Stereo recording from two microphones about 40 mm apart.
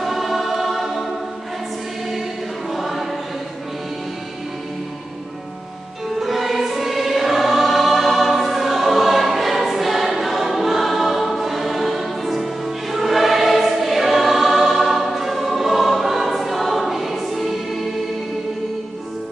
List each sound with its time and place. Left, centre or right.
0.0 s choir: centre
2.7 s choir: centre
6.1 s choir: centre